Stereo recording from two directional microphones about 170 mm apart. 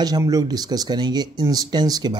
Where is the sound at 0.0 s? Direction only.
20° right (ahead or behind).